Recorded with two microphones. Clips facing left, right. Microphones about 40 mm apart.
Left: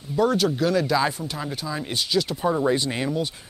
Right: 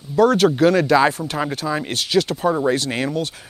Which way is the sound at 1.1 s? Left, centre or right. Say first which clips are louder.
Right 7 dB; right.